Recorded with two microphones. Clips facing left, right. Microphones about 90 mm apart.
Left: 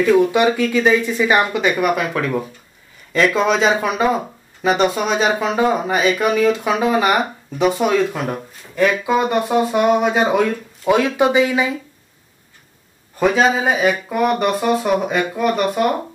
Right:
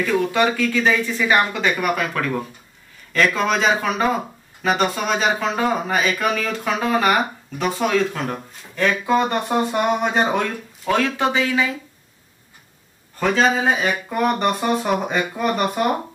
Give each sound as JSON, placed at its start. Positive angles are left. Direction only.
{"t": 0.0, "sound": "speech", "side_deg": 10}
{"t": 10.9, "sound": "speech", "side_deg": 15}
{"t": 13.2, "sound": "speech", "side_deg": 10}